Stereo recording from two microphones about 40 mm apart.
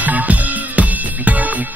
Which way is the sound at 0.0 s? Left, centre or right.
Right.